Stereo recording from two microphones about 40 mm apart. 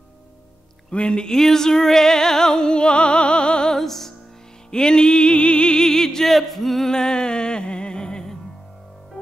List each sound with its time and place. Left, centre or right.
0.8 s speech: left
1.3 s music: centre
3.7 s music: centre
4.6 s music: centre
5.9 s music: centre
6.9 s music: centre